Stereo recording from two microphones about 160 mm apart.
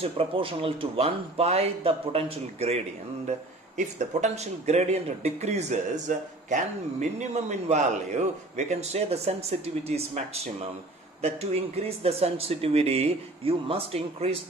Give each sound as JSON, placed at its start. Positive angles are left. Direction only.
{"t": 0.0, "sound": "a man's voice", "side_deg": -35}